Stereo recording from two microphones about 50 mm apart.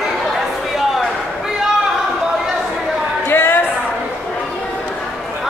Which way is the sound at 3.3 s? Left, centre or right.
Left.